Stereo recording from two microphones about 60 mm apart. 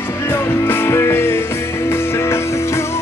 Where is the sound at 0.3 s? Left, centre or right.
Left.